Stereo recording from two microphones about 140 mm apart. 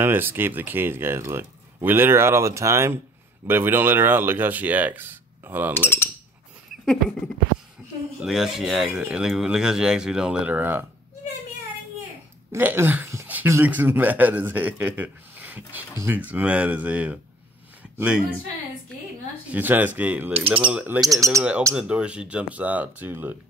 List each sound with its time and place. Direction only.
0.0 s speech: 15° right (ahead or behind)
5.8 s speech: 15° left (ahead or behind)
8.2 s speech: centre (ahead or behind)
12.5 s speech: 15° right (ahead or behind)
19.5 s speech: 10° right (ahead or behind)
21.0 s bird: 25° right (ahead or behind)
21.4 s speech: 10° right (ahead or behind)